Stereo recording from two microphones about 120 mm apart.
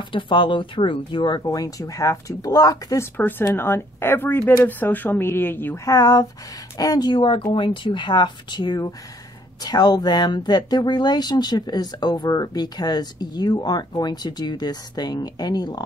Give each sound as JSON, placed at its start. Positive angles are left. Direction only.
{"t": 0.1, "sound": "speech", "side_deg": 45}
{"t": 3.2, "sound": "speech", "side_deg": 15}
{"t": 5.9, "sound": "speech", "side_deg": 30}